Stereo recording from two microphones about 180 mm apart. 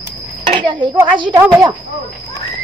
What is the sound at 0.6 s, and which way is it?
Speech, 25° right (ahead or behind).